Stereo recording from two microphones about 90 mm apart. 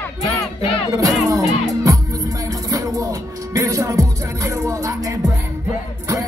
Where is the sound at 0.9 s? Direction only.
40° right (ahead or behind).